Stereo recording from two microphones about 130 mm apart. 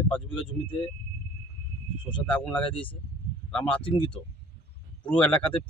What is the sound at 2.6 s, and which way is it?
Speech, 40° left (ahead or behind).